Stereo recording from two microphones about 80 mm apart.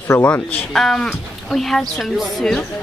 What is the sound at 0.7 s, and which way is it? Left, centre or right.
Speech, centre.